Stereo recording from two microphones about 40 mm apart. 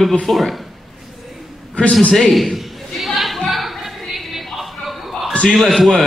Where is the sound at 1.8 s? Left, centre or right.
Left.